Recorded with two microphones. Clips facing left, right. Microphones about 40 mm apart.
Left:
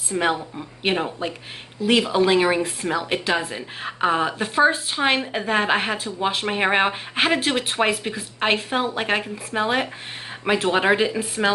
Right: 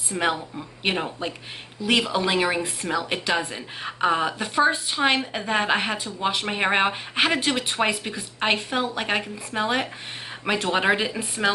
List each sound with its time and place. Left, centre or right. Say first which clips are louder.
0.2 s speech: left 1 dB; centre